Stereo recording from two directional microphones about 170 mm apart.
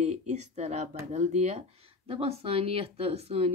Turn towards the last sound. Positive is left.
turn(degrees=-35)  # may be behind; listen again after turning